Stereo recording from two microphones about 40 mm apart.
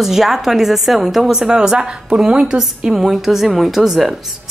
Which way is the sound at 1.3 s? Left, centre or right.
Centre.